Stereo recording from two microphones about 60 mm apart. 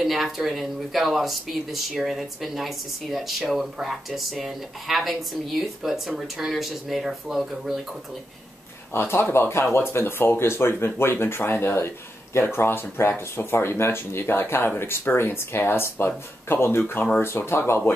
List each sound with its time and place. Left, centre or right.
0.0 s speech: centre
8.9 s speech: left